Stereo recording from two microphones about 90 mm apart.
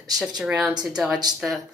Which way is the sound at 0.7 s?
50° right (ahead or behind).